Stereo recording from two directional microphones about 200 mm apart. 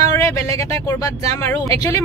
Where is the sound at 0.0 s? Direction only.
15° left (ahead or behind).